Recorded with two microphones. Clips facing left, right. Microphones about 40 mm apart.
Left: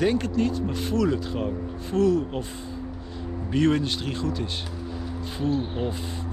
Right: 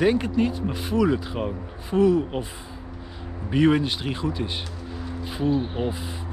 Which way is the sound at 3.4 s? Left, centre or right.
Centre.